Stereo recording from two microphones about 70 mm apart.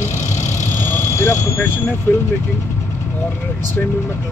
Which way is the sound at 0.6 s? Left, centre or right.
Left.